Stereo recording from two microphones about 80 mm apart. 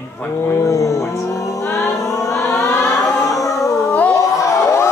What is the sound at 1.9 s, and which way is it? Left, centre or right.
Music, left.